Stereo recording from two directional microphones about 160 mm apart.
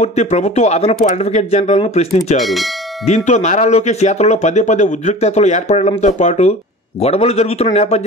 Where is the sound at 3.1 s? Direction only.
45° left (ahead or behind).